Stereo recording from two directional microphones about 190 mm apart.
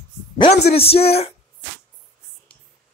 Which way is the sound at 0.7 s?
30° left (ahead or behind).